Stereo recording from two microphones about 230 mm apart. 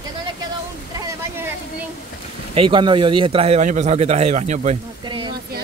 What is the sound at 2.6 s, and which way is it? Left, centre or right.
A man's voice, right.